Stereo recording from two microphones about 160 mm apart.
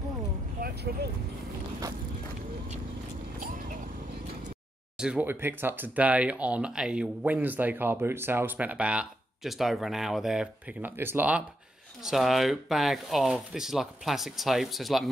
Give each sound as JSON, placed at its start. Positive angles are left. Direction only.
{"t": 0.6, "sound": "speech", "side_deg": -70}
{"t": 4.9, "sound": "speech", "side_deg": -5}